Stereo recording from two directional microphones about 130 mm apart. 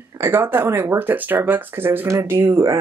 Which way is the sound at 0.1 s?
15° right (ahead or behind).